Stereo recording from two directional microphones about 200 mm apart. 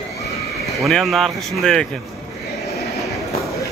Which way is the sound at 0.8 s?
Centre (ahead or behind).